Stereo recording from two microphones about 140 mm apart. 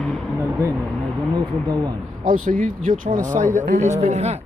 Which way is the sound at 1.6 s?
30° right (ahead or behind).